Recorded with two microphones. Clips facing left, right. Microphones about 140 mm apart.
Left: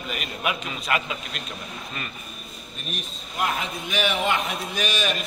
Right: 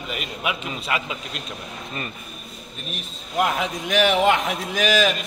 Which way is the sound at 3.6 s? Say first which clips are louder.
Right 6 dB; 90° right.